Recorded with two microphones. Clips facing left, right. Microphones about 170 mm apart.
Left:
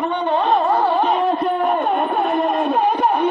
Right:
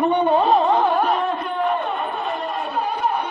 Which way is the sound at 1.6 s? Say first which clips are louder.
Left 4 dB; 50° left (ahead or behind).